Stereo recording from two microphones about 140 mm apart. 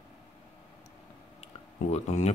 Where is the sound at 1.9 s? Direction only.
55° left (ahead or behind).